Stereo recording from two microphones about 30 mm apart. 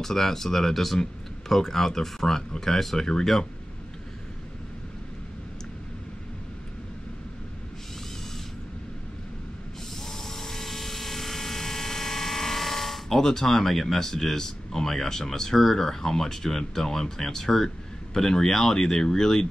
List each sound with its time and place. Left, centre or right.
0.0 s speech: centre
10.0 s a sound: centre
13.1 s speech: centre